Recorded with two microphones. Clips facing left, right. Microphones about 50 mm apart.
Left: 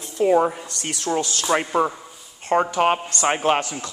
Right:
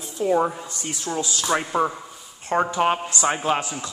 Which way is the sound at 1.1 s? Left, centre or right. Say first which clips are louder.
Left 2 dB; left.